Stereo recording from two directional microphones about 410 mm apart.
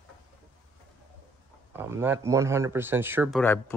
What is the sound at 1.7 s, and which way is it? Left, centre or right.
Speech, centre.